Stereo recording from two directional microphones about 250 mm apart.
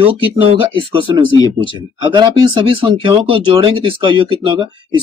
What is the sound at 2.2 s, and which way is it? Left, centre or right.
Speech, right.